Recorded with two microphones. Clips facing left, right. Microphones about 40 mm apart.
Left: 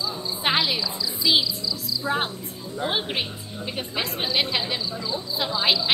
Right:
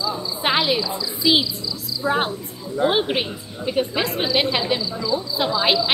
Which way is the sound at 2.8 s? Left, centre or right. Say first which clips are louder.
Right 7 dB; centre.